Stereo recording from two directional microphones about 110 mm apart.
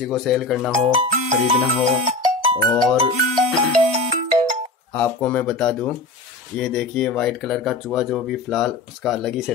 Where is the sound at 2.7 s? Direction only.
10° left (ahead or behind).